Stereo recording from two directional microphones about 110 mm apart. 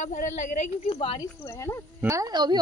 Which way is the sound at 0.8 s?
55° left (ahead or behind).